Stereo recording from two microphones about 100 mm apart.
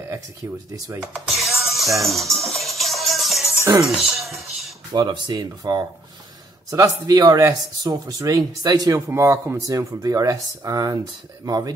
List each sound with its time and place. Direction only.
1.3 s music: centre (ahead or behind)
3.8 s speech: 5° right (ahead or behind)
4.9 s speech: 50° right (ahead or behind)
8.9 s speech: 25° right (ahead or behind)